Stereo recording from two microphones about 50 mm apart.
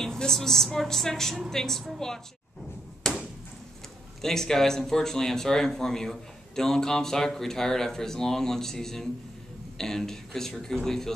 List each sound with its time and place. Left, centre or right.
0.0 s speech: centre
3.0 s a sound: centre
4.2 s speech: centre